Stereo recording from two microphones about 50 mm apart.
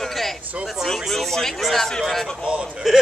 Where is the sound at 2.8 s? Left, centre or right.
Centre.